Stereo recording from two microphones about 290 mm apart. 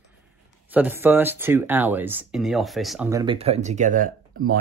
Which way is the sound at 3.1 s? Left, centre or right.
Centre.